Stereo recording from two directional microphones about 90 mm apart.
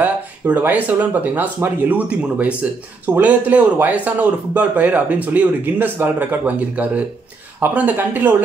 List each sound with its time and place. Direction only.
0.0 s speech: 20° right (ahead or behind)